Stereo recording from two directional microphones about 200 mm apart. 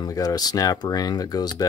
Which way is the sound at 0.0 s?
20° left (ahead or behind).